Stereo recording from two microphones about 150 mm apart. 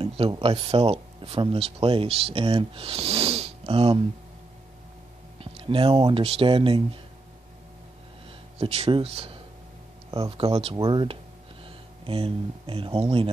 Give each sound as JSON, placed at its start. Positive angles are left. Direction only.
{"t": 0.4, "sound": "speech", "side_deg": -40}
{"t": 5.4, "sound": "speech", "side_deg": -35}
{"t": 8.5, "sound": "speech", "side_deg": -40}